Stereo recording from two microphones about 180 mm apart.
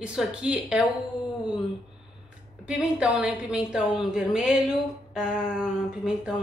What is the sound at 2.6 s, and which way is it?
A woman's voice, 5° right (ahead or behind).